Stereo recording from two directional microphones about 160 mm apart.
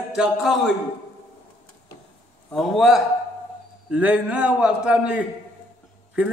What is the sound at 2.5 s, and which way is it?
A man's voice, centre (ahead or behind).